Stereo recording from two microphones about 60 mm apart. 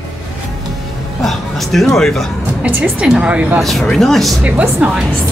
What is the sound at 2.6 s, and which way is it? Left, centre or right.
Speech, right.